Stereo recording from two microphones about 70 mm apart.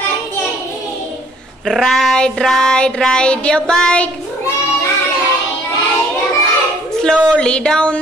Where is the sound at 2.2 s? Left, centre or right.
Centre.